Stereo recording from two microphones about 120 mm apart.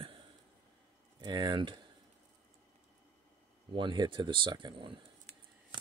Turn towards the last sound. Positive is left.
turn(degrees=-40)  # may be behind; listen again after turning